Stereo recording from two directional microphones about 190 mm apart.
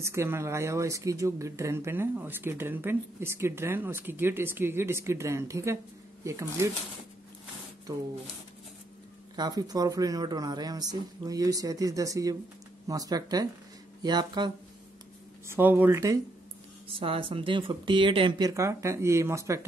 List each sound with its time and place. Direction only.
0.0 s speech: 15° right (ahead or behind)
9.3 s speech: 20° right (ahead or behind)
15.4 s speech: 10° right (ahead or behind)
16.8 s speech: 30° right (ahead or behind)